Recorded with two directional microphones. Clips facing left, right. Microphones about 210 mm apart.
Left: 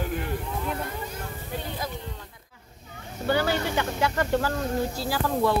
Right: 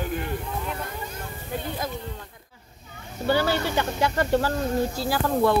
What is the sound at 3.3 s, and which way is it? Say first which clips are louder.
Speech: right 2 dB; 30° right (ahead or behind).